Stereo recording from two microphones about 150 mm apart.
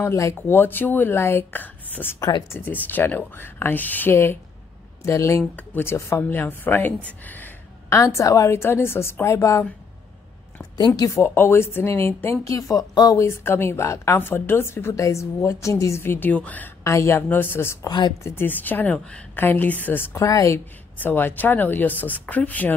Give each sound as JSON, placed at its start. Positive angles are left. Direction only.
{"t": 0.0, "sound": "speech", "side_deg": 20}
{"t": 11.0, "sound": "speech", "side_deg": 15}
{"t": 17.8, "sound": "speech", "side_deg": 30}
{"t": 18.2, "sound": "speech", "side_deg": 15}